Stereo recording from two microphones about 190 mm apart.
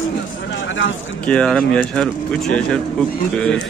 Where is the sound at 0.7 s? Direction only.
80° left.